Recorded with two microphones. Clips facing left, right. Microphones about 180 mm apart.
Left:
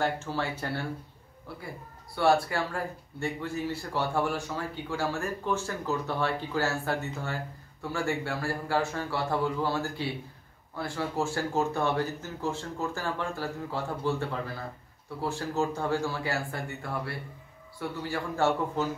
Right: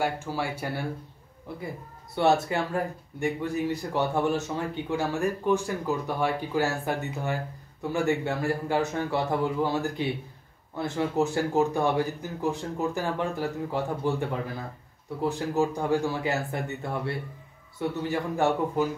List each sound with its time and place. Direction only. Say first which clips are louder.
0.0 s speech: right 1 dB; 10° right (ahead or behind)
2.1 s speech: right 2 dB; 20° right (ahead or behind)